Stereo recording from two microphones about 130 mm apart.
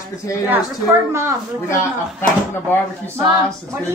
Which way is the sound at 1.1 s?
20° right (ahead or behind).